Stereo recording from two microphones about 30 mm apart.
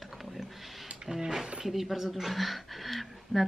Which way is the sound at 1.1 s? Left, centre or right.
Centre.